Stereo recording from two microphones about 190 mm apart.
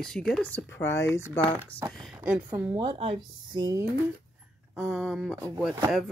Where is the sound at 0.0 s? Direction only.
5° left (ahead or behind).